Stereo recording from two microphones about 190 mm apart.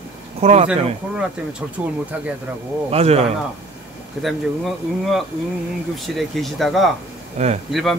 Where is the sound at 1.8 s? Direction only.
5° right (ahead or behind).